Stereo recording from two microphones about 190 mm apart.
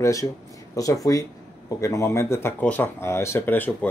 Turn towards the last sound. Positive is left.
turn(degrees=10)  # may be behind; listen again after turning